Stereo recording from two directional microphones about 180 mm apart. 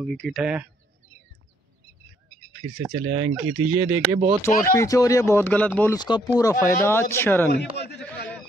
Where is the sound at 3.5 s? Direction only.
15° right (ahead or behind).